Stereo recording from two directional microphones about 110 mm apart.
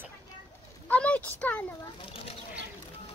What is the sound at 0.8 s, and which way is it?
Speech, 10° left (ahead or behind).